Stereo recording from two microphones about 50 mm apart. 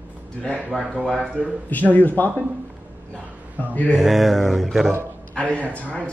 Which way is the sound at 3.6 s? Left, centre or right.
Left.